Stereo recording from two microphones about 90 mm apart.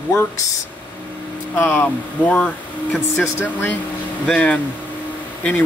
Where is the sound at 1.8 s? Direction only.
15° left (ahead or behind).